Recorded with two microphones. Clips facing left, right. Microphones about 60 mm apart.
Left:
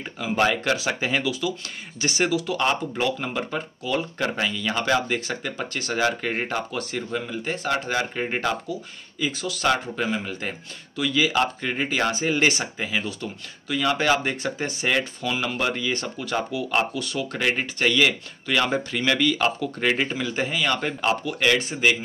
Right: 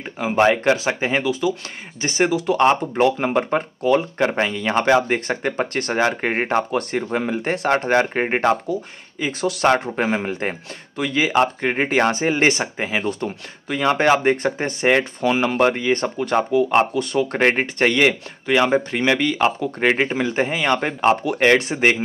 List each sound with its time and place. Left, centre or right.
0.2 s speech: right
5.9 s speech: right
12.7 s speech: right
14.3 s speech: right
21.5 s speech: right